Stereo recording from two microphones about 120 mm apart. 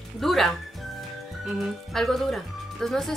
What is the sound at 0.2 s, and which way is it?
Speech, centre (ahead or behind).